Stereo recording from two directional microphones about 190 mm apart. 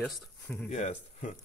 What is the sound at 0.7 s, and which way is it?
Speech, 40° left (ahead or behind).